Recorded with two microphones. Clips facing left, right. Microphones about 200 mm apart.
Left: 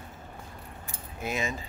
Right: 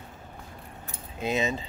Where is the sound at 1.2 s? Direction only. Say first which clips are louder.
Right 5 dB; 20° right (ahead or behind).